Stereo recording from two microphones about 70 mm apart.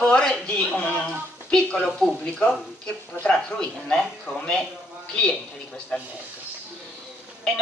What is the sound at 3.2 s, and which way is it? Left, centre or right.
A man's voice, centre.